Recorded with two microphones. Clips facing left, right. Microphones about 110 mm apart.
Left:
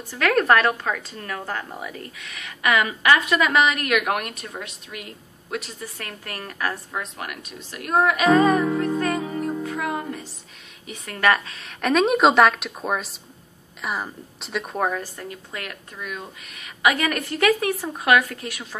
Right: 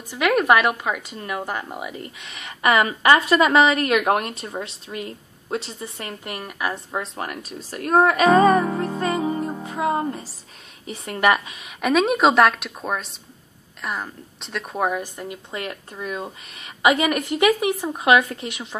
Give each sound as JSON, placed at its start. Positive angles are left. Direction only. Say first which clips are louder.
{"t": 0.1, "sound": "speech", "louder": "right 1 dB", "side_deg": -10}
{"t": 6.9, "sound": "a woman's voice", "louder": "right 3 dB", "side_deg": -30}